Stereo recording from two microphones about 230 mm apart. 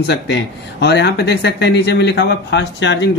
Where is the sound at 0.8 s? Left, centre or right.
Left.